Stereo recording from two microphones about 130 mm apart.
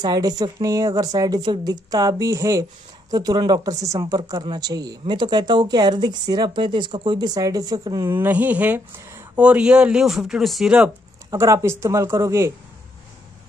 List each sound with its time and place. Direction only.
0.0 s speech: 30° right (ahead or behind)
8.1 s speech: 15° right (ahead or behind)
11.2 s speech: 25° right (ahead or behind)